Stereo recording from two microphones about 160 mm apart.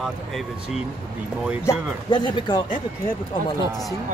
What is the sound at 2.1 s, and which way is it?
Speech, 25° left (ahead or behind).